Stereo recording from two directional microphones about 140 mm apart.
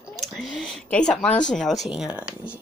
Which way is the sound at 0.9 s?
5° left (ahead or behind).